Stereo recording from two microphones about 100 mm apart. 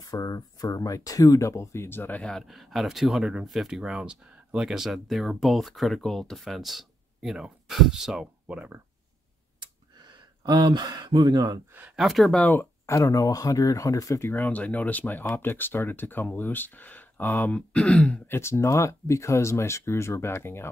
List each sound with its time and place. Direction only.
0.0 s speech: 40° left (ahead or behind); by 2.4 s 15° left (ahead or behind)
2.4 s speech: centre (ahead or behind)
9.6 s a sound: 45° right (ahead or behind)
11.7 s speech: 15° right (ahead or behind)
12.0 s speech: centre (ahead or behind)
12.3 s speech: 15° left (ahead or behind)
18.3 s speech: 25° left (ahead or behind)